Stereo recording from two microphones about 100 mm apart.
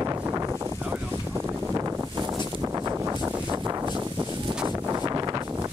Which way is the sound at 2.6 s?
30° right (ahead or behind).